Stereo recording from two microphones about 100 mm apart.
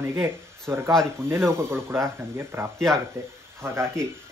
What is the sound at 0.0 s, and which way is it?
Speech, 25° right (ahead or behind).